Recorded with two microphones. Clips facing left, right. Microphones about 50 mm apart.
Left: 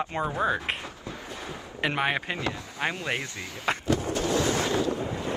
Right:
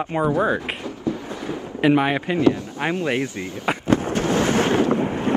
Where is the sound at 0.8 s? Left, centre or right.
Right.